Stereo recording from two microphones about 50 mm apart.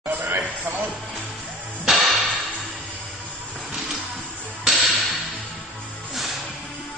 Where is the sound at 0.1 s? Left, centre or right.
Right.